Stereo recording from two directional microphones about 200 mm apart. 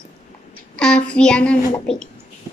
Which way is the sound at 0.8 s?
5° left (ahead or behind).